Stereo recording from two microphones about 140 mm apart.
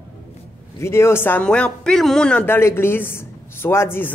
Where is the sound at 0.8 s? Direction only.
20° left (ahead or behind).